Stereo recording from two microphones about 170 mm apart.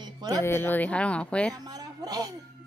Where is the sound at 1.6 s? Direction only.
20° right (ahead or behind).